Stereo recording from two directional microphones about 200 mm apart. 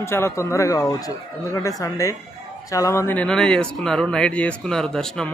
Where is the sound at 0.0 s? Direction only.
15° left (ahead or behind).